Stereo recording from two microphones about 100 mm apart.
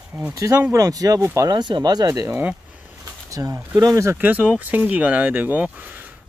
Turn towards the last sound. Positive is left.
turn(degrees=-15)  # may be behind; listen again after turning